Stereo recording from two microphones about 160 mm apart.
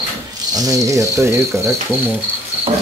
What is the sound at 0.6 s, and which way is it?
Cricket, 20° right (ahead or behind).